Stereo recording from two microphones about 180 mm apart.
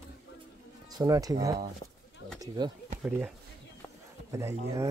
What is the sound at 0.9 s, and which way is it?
Speech, 20° right (ahead or behind).